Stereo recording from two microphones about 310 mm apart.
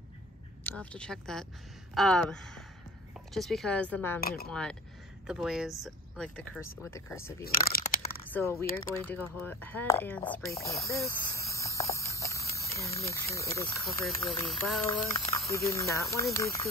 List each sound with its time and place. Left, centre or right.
0.7 s speech: centre
4.2 s speech: left
4.5 s speech: centre
7.4 s crunch: left
8.3 s speech: centre